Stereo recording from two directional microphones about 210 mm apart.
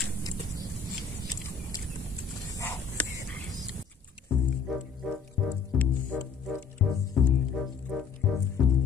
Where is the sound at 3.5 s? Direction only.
Centre (ahead or behind).